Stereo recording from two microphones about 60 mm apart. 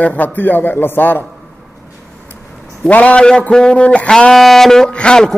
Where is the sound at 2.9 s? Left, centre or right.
Left.